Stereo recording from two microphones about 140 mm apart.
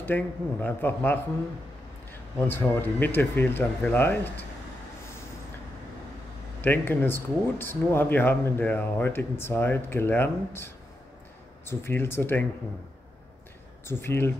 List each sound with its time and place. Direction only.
0.0 s speech: 15° left (ahead or behind)
2.3 s speech: 15° left (ahead or behind)
6.6 s speech: 15° left (ahead or behind)
13.8 s speech: 15° left (ahead or behind)